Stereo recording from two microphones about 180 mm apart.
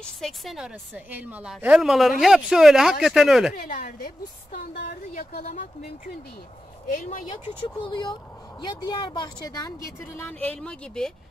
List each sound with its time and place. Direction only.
0.0 s a woman's voice: centre (ahead or behind)
3.6 s a woman's voice: 55° left (ahead or behind)
5.1 s speech: 40° left (ahead or behind)
6.9 s speech: 50° left (ahead or behind)
7.6 s speech: 25° left (ahead or behind); by 11.1 s 5° left (ahead or behind)